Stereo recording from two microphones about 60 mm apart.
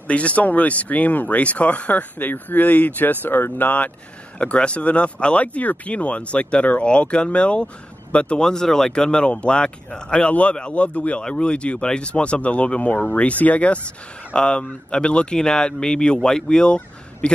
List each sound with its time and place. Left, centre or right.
0.1 s speech: left
4.4 s speech: centre